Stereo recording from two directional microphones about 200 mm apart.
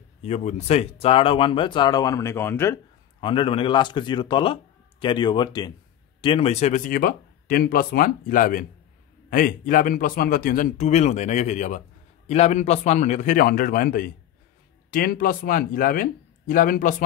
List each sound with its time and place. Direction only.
0.2 s speech: 35° left (ahead or behind); by 2.8 s 10° left (ahead or behind)
3.2 s speech: 25° left (ahead or behind); by 16.9 s 45° left (ahead or behind)